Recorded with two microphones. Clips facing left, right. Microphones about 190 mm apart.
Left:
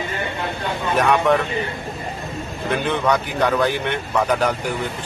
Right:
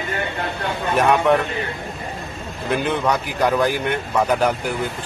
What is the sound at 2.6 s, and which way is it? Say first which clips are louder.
Speech: even; centre (ahead or behind).